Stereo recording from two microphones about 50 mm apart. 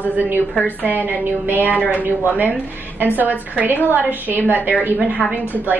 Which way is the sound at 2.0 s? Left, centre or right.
Right.